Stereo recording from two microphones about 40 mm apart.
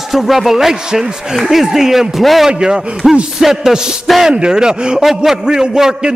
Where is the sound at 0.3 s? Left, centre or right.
Centre.